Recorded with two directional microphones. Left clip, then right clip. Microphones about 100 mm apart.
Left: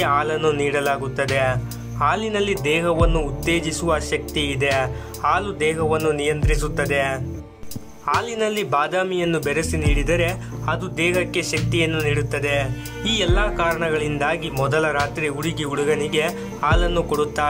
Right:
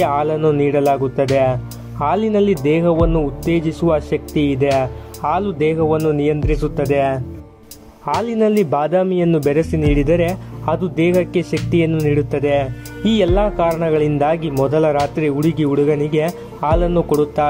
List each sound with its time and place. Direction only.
0.1 s speech: 60° right (ahead or behind)
2.6 s speech: 55° right (ahead or behind)
8.3 s speech: 80° right; by 9.4 s 60° right (ahead or behind)
9.5 s speech: 75° right (ahead or behind)
11.7 s speech: 60° right (ahead or behind)